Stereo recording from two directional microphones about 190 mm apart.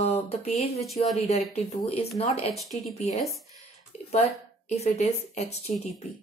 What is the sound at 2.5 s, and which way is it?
Speech, centre (ahead or behind).